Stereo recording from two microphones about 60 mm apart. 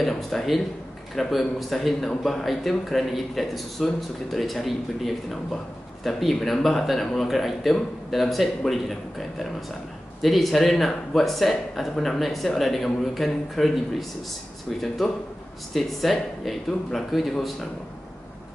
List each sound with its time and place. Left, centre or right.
0.0 s a man's voice: centre
10.2 s a man's voice: centre